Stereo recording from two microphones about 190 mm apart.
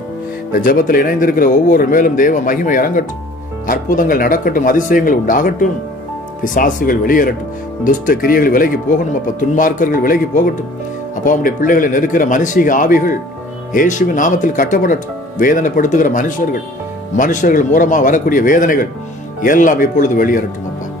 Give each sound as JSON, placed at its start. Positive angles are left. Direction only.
{"t": 0.5, "sound": "speech", "side_deg": 45}